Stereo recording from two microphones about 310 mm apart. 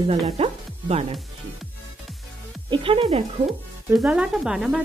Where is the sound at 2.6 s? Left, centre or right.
Centre.